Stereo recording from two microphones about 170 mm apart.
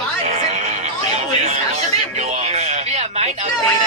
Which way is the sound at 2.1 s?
40° right (ahead or behind).